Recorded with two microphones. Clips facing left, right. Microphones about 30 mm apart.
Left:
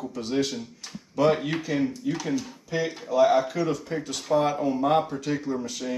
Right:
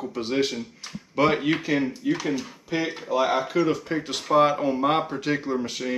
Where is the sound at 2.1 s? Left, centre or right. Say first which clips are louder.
Right 2 dB; centre.